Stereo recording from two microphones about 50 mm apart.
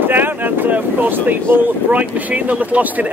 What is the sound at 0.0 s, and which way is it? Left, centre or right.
Speech, right.